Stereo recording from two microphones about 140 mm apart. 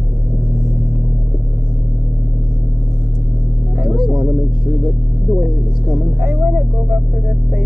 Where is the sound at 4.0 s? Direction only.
25° right (ahead or behind).